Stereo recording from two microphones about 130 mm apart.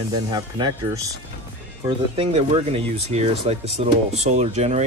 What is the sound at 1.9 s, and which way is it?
Speech, 45° right (ahead or behind).